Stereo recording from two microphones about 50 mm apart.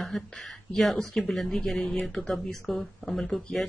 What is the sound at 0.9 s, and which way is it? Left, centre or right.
Speech, centre.